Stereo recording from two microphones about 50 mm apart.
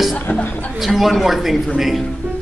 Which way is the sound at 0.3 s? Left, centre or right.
Left.